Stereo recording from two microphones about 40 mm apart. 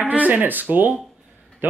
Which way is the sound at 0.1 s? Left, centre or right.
Right.